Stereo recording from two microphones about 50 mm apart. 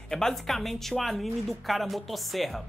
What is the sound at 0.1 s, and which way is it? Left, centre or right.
Speech, centre.